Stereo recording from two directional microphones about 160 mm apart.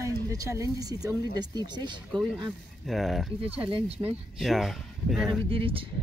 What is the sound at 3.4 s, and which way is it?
Speech, 35° right (ahead or behind).